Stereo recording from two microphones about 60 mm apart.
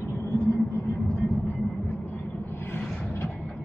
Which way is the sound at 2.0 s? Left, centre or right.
Left.